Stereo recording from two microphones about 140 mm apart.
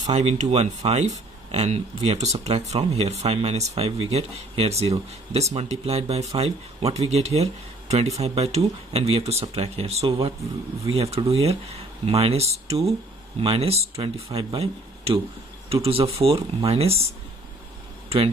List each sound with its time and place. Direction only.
0.1 s speech: 55° right (ahead or behind)